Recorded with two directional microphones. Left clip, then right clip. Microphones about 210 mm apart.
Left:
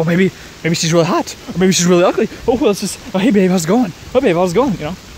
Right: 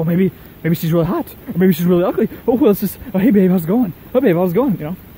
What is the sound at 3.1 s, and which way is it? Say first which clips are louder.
Speech: left 1 dB; centre (ahead or behind).